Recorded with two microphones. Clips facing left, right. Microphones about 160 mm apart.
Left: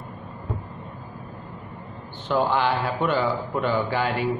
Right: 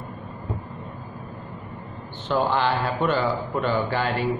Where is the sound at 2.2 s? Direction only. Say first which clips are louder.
Even; 10° left (ahead or behind).